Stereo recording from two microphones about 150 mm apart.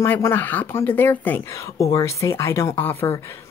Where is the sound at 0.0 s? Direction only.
15° left (ahead or behind).